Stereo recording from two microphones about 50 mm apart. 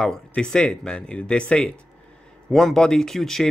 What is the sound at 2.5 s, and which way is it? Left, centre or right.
Speech, centre.